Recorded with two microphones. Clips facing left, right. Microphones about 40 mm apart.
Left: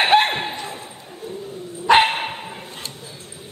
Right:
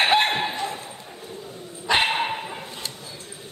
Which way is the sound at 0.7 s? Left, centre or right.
Centre.